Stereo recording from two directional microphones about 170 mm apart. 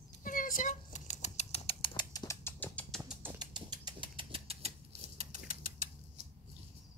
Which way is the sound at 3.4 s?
25° right (ahead or behind).